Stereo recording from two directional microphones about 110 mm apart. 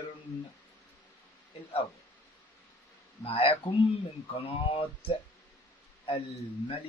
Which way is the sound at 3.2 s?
55° left (ahead or behind).